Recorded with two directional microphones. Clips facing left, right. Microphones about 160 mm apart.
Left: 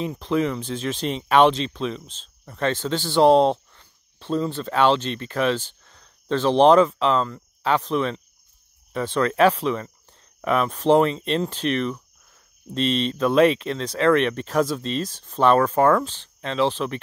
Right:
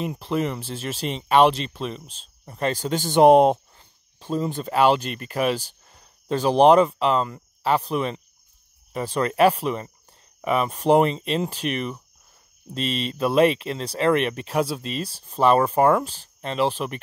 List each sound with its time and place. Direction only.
0.0 s speech: 5° right (ahead or behind)